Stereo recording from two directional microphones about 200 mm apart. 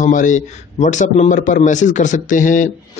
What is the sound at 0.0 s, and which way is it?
A man's voice, 40° left (ahead or behind).